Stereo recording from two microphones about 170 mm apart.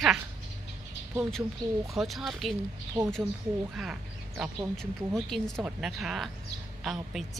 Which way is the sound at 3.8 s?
5° right (ahead or behind).